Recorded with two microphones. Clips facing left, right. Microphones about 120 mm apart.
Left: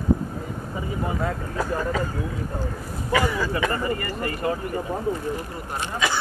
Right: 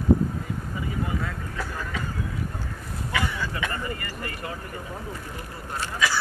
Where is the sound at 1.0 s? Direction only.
40° left (ahead or behind).